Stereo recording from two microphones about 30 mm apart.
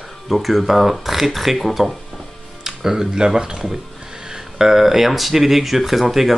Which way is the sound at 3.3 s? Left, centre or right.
Right.